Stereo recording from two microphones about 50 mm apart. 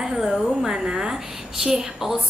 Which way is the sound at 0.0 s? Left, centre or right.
Centre.